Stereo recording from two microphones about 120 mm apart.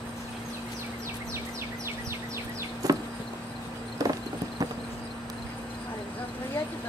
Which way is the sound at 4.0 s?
30° right (ahead or behind).